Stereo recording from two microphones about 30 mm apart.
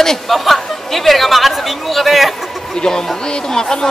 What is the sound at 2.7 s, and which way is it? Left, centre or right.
Speech, left.